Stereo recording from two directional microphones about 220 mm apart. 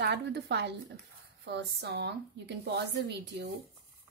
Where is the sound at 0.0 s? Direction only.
50° right (ahead or behind).